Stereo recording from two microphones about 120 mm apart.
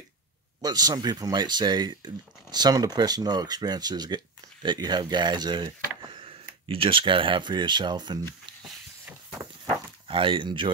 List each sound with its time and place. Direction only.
0.6 s speech: 35° right (ahead or behind)
9.0 s a sound: 25° right (ahead or behind)
10.0 s speech: 45° right (ahead or behind)